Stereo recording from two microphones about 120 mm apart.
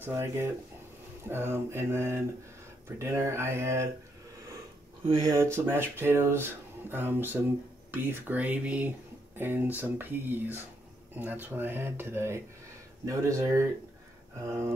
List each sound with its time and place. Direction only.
0.0 s speech: 20° right (ahead or behind)
5.2 s speech: 25° right (ahead or behind)